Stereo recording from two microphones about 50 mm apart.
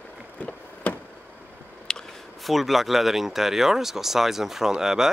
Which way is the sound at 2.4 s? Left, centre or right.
Centre.